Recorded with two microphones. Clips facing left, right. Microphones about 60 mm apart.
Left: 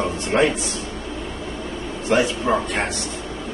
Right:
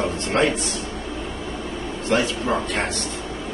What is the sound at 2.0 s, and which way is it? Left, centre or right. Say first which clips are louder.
Speech: left 2 dB; centre.